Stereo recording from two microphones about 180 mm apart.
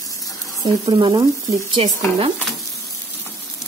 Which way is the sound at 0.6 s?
25° right (ahead or behind).